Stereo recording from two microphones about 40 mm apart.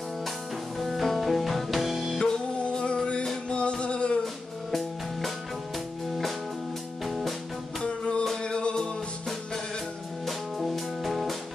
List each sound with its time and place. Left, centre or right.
0.7 s music: centre
2.1 s music: centre
4.2 s music: centre
7.1 s music: centre
7.8 s music: left
10.2 s music: centre